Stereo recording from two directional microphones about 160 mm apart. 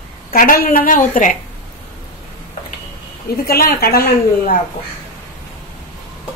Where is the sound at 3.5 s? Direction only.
75° left (ahead or behind).